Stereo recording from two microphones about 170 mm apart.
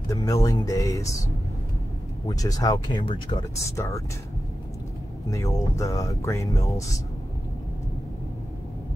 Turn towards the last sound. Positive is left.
turn(degrees=20)  # may be behind; listen again after turning